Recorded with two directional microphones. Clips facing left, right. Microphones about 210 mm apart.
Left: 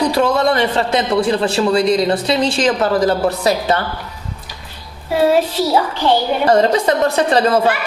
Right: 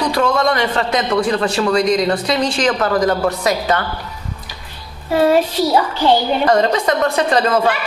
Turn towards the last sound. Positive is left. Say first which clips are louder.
# left 1 dB
turn(degrees=30)  # may be behind; listen again after turning